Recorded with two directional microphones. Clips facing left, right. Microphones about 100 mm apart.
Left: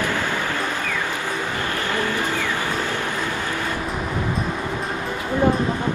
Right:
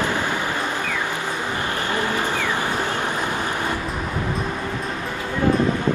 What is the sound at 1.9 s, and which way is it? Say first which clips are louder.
Vehicle: right 1 dB; 20° right (ahead or behind).